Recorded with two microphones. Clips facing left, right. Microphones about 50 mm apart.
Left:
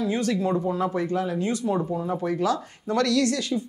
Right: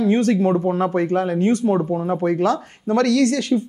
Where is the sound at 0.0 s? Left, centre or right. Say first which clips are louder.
Right 7 dB; right.